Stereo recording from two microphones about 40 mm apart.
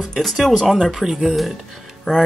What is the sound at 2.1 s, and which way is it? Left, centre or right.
Music, left.